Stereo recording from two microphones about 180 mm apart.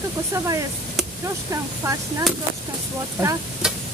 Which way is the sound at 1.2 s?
15° right (ahead or behind).